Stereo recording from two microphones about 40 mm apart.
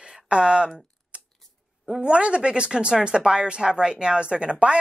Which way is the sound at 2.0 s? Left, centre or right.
Right.